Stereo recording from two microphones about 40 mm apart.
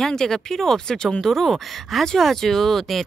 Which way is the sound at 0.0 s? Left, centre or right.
Centre.